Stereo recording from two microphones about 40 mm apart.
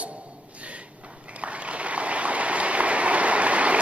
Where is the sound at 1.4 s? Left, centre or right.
Right.